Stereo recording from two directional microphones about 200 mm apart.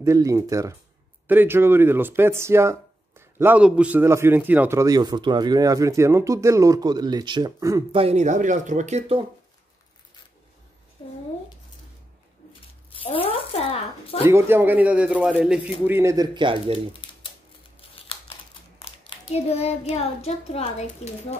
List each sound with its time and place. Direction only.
0.0 s speech: 15° right (ahead or behind)
8.0 s speech: 35° right (ahead or behind)
11.0 s speech: 25° left (ahead or behind)
13.0 s speech: 25° left (ahead or behind)
14.2 s speech: 10° right (ahead or behind)
18.8 s a child's voice: 30° left (ahead or behind)